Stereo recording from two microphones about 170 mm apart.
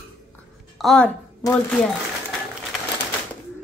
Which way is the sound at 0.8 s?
Centre (ahead or behind).